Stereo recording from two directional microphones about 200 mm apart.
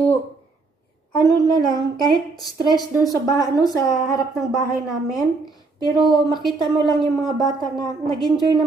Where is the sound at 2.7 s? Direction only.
20° left (ahead or behind).